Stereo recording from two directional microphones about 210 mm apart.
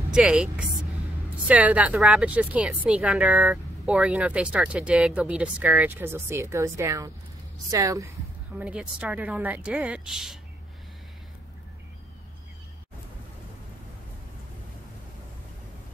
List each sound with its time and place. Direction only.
0.1 s a woman's voice: 5° right (ahead or behind)